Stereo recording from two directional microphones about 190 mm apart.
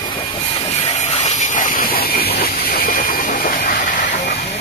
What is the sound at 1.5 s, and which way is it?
Train, 45° left (ahead or behind).